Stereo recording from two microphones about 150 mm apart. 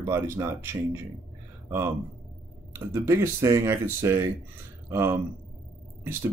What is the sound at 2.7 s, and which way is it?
Speech, 15° right (ahead or behind).